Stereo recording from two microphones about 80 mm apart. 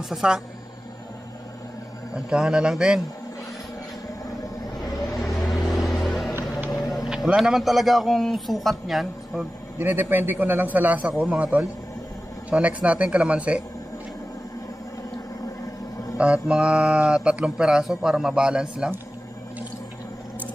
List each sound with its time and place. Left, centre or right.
0.1 s speech: centre
2.1 s speech: centre
5.1 s vehicle: centre
7.1 s a man's voice: centre
9.8 s a man's voice: right
16.2 s speech: centre